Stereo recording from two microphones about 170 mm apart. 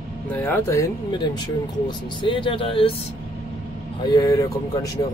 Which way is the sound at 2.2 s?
30° left (ahead or behind).